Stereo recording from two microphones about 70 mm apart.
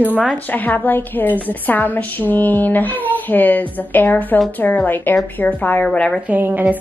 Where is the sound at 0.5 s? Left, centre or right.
Left.